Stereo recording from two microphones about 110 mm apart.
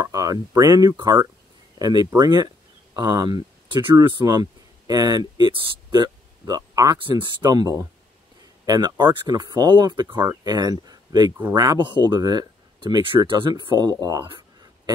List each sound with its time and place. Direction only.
0.0 s speech: 30° right (ahead or behind)
7.0 s speech: 50° right (ahead or behind); by 14.2 s 35° right (ahead or behind)
14.2 s a sound: 45° right (ahead or behind)